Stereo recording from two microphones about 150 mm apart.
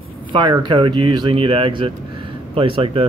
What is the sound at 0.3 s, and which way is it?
Speech, 30° right (ahead or behind).